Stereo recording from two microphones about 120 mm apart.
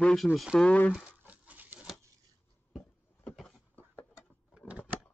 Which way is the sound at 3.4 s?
15° left (ahead or behind).